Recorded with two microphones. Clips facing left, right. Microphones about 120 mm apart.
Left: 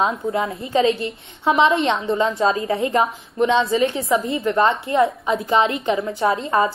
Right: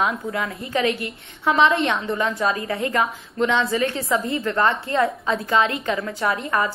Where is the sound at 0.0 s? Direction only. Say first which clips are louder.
Left 3 dB; 25° left (ahead or behind).